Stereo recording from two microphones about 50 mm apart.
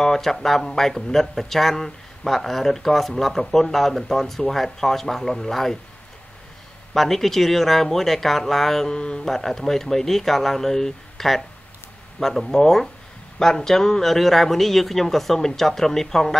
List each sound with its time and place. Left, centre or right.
0.0 s speech: centre
6.9 s speech: centre